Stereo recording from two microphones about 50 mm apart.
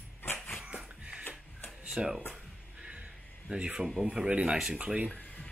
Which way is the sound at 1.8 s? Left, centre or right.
Centre.